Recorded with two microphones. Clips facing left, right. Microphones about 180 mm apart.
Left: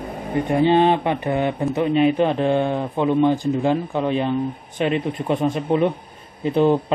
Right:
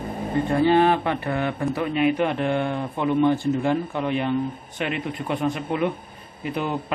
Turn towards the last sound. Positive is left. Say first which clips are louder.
# left 10 dB
turn(degrees=25)  # may be behind; listen again after turning